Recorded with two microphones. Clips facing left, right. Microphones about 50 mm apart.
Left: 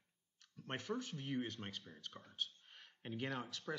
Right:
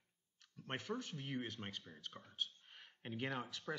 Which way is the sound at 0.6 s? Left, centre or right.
Centre.